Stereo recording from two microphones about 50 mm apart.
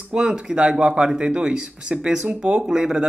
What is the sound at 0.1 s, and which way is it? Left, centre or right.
Speech, centre.